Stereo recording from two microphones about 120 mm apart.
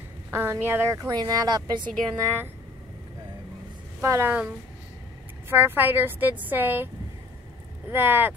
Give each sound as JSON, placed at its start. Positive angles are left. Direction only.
{"t": 0.3, "sound": "speech", "side_deg": -20}
{"t": 0.9, "sound": "speech", "side_deg": -35}
{"t": 4.0, "sound": "a woman's voice", "side_deg": -25}
{"t": 5.5, "sound": "a woman's voice", "side_deg": -15}
{"t": 7.9, "sound": "a woman's voice", "side_deg": -15}